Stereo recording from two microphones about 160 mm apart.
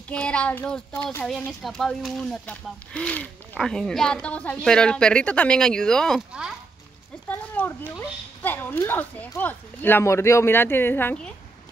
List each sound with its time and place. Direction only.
0.1 s speech: 5° left (ahead or behind)
7.2 s speech: 10° left (ahead or behind)